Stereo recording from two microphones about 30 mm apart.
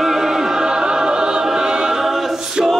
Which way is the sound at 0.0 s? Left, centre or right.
Centre.